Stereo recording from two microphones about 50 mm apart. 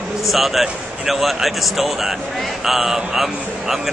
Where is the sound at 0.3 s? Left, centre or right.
Centre.